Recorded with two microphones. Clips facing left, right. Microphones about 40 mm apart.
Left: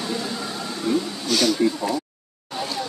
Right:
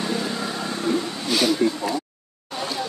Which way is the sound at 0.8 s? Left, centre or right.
Right.